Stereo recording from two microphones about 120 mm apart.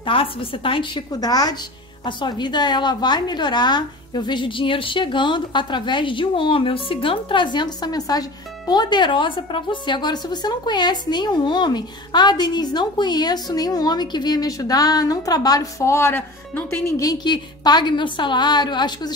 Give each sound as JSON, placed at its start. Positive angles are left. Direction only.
{"t": 0.0, "sound": "a woman's voice", "side_deg": 50}
{"t": 1.2, "sound": "a woman's voice", "side_deg": 30}